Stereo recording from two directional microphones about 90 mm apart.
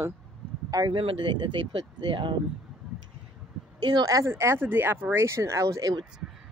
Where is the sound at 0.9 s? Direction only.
85° right; by 2.4 s 60° right (ahead or behind).